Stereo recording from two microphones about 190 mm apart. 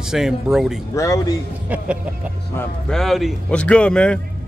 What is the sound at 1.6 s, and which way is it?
Music, 10° right (ahead or behind).